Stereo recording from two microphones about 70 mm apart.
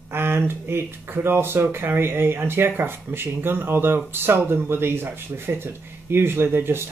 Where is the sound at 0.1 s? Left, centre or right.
Right.